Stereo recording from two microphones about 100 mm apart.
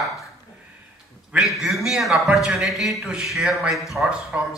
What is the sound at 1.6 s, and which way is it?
A man's voice, centre (ahead or behind).